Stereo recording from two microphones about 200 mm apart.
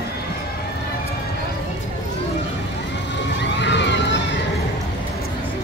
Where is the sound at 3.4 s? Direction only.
60° left (ahead or behind).